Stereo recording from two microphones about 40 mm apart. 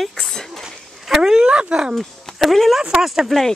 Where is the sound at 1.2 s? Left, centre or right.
Centre.